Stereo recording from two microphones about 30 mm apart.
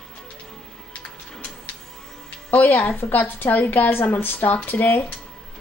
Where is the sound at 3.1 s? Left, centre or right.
Left.